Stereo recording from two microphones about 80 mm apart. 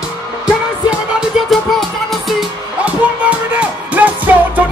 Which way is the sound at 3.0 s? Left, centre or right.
Centre.